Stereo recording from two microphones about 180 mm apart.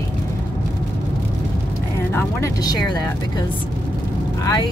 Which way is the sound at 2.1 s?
20° left (ahead or behind).